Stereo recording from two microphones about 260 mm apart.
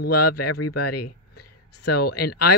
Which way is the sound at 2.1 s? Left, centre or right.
Left.